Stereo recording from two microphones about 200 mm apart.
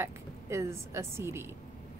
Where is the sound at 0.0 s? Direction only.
15° right (ahead or behind).